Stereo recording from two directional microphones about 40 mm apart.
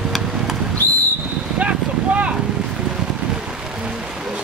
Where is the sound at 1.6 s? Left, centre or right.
Right.